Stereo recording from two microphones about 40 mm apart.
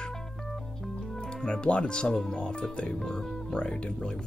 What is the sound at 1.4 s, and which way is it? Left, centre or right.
Speech, left.